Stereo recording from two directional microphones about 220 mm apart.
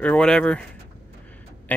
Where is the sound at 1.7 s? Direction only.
5° left (ahead or behind).